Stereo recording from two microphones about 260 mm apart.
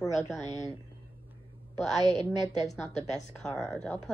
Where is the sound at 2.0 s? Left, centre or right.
Centre.